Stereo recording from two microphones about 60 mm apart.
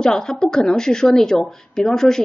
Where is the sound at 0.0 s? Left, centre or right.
Centre.